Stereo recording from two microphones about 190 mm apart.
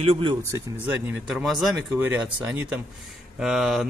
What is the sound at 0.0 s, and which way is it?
Speech, 30° right (ahead or behind).